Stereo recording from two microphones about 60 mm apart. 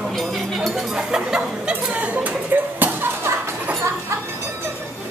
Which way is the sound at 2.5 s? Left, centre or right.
Right.